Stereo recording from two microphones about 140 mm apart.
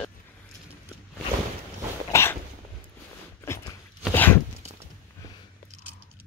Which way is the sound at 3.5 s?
20° left (ahead or behind).